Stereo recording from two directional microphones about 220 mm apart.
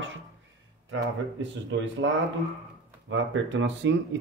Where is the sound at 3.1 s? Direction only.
55° right (ahead or behind).